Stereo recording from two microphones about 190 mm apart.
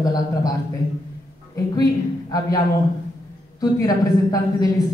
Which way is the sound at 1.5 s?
20° left (ahead or behind).